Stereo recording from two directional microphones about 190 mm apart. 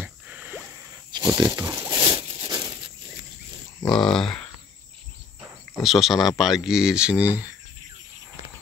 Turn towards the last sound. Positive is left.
turn(degrees=-10)  # may be behind; listen again after turning